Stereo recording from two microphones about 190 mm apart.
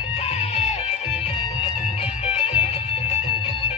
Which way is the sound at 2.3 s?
35° left (ahead or behind).